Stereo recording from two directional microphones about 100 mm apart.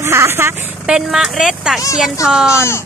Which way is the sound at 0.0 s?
25° right (ahead or behind).